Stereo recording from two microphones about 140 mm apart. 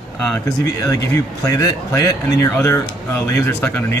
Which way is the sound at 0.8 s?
25° left (ahead or behind).